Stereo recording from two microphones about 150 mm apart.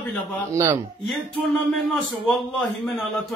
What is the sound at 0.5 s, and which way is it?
Speech, 20° right (ahead or behind).